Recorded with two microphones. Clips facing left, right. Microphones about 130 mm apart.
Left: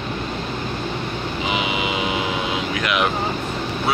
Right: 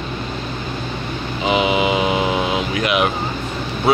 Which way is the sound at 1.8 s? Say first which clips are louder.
Right 6 dB; 30° right (ahead or behind).